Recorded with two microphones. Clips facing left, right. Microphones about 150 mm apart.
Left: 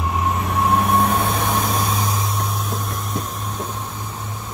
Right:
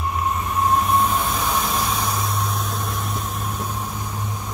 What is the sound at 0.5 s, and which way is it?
Train, 75° left (ahead or behind).